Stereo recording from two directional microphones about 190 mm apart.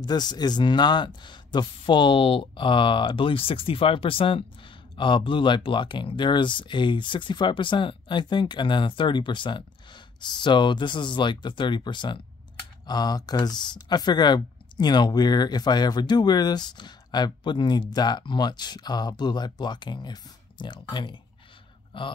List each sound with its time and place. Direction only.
0.0 s speech: 20° left (ahead or behind)